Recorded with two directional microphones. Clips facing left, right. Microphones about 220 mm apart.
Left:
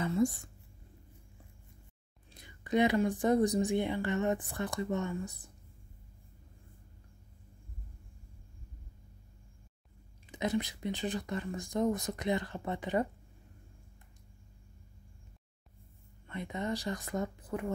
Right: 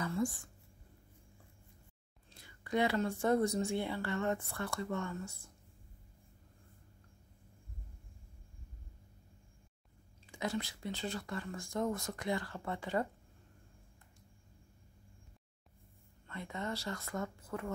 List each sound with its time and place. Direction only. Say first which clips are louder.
0.0 s a sound: left 6 dB; 25° left (ahead or behind)
2.3 s speech: left 5 dB; 20° left (ahead or behind)
10.2 s speech: left 5 dB; 20° left (ahead or behind)
16.3 s speech: left 5 dB; 20° left (ahead or behind)